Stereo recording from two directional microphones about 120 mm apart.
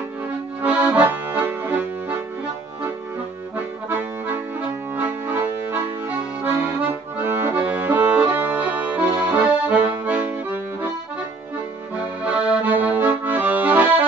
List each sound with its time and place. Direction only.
0.6 s accordion: 10° right (ahead or behind)
3.5 s accordion: 15° right (ahead or behind)
12.3 s accordion: 10° right (ahead or behind)